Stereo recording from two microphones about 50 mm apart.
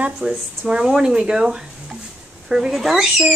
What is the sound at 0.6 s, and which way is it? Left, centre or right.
A child's voice, centre.